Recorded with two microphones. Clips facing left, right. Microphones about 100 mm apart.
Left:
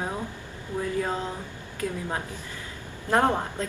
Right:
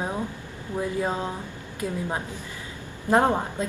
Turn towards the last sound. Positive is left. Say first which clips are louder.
# right 2 dB
turn(degrees=-15)  # may be behind; listen again after turning